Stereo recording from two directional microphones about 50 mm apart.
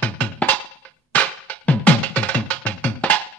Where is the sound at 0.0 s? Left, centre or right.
Left.